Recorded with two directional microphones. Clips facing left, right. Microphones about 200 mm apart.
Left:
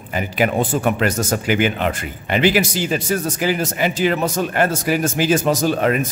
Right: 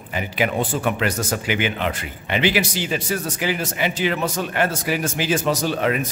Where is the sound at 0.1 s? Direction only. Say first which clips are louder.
Left 4 dB; 45° left (ahead or behind).